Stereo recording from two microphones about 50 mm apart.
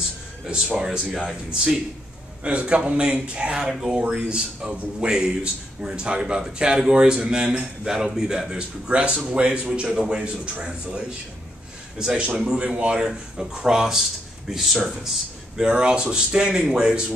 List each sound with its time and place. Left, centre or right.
0.5 s a man's voice: centre
2.4 s a man's voice: right
12.0 s a man's voice: centre
15.5 s a man's voice: centre